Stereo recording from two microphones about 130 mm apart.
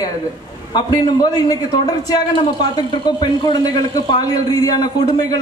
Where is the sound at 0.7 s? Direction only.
30° left (ahead or behind).